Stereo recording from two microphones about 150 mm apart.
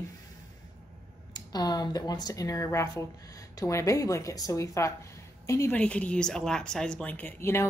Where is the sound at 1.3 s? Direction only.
25° left (ahead or behind).